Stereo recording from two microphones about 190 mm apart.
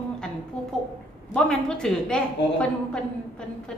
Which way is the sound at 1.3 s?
5° left (ahead or behind).